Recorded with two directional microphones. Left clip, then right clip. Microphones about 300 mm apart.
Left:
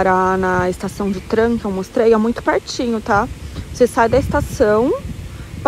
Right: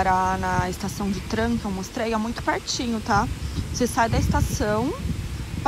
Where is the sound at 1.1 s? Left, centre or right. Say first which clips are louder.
Left 11 dB; centre.